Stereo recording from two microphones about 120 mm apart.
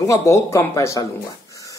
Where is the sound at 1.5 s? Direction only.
25° left (ahead or behind).